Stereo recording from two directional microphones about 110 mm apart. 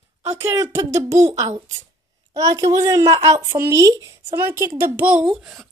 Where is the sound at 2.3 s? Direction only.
30° right (ahead or behind).